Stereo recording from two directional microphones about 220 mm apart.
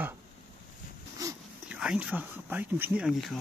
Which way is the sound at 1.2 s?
5° right (ahead or behind).